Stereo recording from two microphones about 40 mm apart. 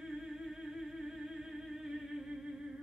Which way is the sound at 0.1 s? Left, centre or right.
Centre.